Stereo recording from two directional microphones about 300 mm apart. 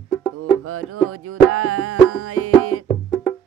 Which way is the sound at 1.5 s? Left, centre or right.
Right.